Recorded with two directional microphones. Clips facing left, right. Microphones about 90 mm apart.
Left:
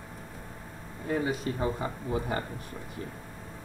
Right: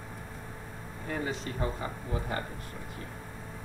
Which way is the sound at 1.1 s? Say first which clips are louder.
Left 5 dB; 10° left (ahead or behind).